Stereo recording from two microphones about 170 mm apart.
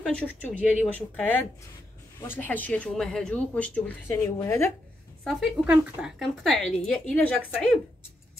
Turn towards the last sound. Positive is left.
turn(degrees=5)  # may be behind; listen again after turning